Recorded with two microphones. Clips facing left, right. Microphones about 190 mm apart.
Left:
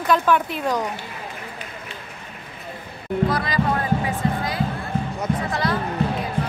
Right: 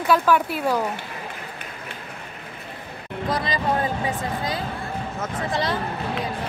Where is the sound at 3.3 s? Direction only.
20° right (ahead or behind).